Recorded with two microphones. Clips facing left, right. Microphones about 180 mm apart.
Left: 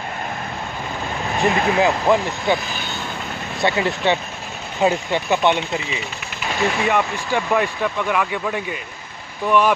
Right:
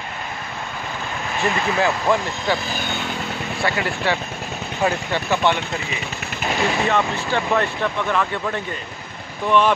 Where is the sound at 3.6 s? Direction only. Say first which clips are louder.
Left 4 dB; 20° left (ahead or behind).